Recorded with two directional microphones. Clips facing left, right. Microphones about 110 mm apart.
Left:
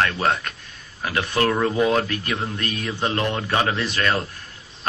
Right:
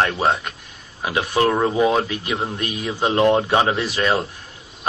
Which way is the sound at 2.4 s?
20° right (ahead or behind).